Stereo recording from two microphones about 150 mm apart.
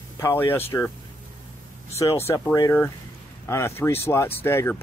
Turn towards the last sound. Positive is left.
turn(degrees=15)  # may be behind; listen again after turning